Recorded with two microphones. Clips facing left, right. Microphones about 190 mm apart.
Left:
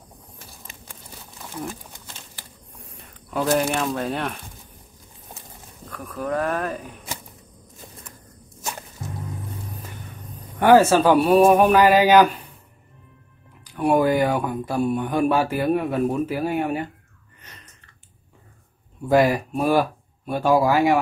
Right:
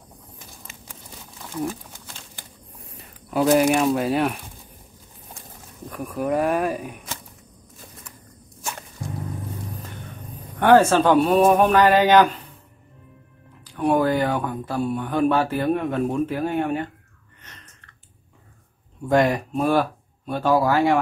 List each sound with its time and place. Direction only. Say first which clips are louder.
3.4 s speech: right 5 dB; 10° right (ahead or behind)
5.9 s speech: right 3 dB; 15° right (ahead or behind)
10.6 s speech: left 1 dB; 5° left (ahead or behind)
13.7 s speech: left 1 dB; 10° left (ahead or behind)
19.0 s speech: left 1 dB; 5° left (ahead or behind)